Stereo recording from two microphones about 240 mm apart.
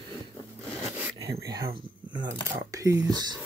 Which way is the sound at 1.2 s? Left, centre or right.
Centre.